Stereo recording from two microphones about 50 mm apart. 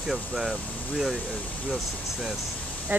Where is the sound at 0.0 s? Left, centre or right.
Centre.